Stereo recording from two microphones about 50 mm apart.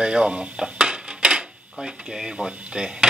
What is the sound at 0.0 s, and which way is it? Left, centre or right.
Dishes, centre.